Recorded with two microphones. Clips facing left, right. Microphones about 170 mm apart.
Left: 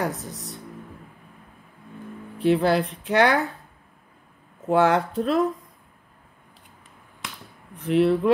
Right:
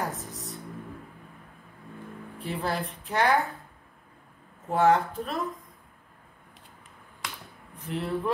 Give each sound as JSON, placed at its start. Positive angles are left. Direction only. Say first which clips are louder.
{"t": 0.0, "sound": "speech", "louder": "left 5 dB", "side_deg": 75}
{"t": 2.3, "sound": "speech", "louder": "left 11 dB", "side_deg": 75}
{"t": 4.6, "sound": "speech", "louder": "left 3 dB", "side_deg": 75}
{"t": 7.7, "sound": "speech", "louder": "left 12 dB", "side_deg": 80}